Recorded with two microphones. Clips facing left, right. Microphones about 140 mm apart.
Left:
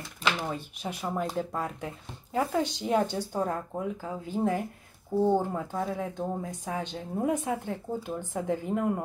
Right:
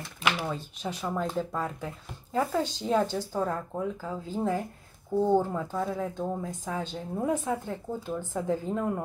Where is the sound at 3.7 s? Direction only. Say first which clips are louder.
Right 1 dB; 15° left (ahead or behind).